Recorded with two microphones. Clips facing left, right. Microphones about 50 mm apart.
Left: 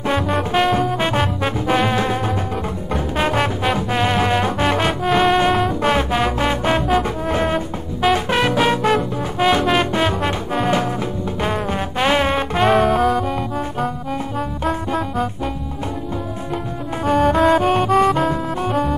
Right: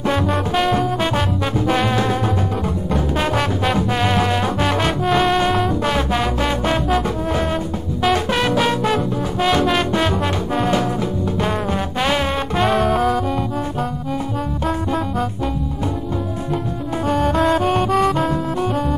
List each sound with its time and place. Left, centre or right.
0.0 s music: centre
0.9 s music: centre
1.7 s music: centre
5.0 s music: centre
5.8 s music: centre
10.7 s music: left; by 13.2 s centre
14.6 s music: centre
17.0 s music: centre